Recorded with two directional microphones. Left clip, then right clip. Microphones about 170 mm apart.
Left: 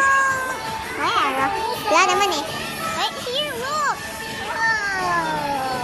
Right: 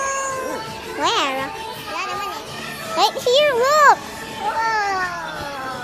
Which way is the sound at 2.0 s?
45° left (ahead or behind).